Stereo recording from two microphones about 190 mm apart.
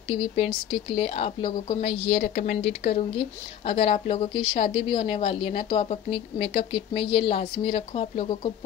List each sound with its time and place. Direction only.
0.1 s a woman's voice: 25° left (ahead or behind)
2.3 s speech: 55° left (ahead or behind)
2.8 s speech: 30° left (ahead or behind)